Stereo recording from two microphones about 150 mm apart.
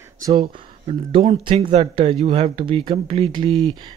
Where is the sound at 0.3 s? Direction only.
35° right (ahead or behind).